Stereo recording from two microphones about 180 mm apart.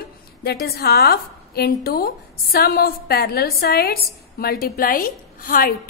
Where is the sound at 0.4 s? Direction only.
60° left (ahead or behind).